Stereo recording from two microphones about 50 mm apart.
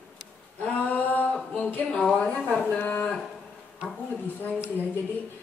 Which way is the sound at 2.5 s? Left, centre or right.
Left.